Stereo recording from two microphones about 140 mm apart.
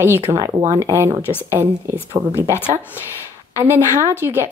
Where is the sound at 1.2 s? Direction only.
15° left (ahead or behind).